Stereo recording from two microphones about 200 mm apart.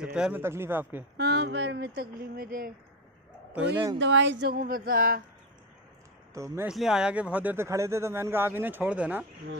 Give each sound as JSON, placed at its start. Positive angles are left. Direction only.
{"t": 0.0, "sound": "speech", "side_deg": -5}
{"t": 1.1, "sound": "speech", "side_deg": -60}
{"t": 3.5, "sound": "speech", "side_deg": -5}
{"t": 4.0, "sound": "speech", "side_deg": -65}
{"t": 4.6, "sound": "a sound", "side_deg": -45}
{"t": 6.3, "sound": "speech", "side_deg": -15}
{"t": 6.7, "sound": "speech", "side_deg": 0}